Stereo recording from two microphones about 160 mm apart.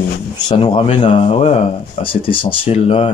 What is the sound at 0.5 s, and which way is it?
Speech, 30° left (ahead or behind).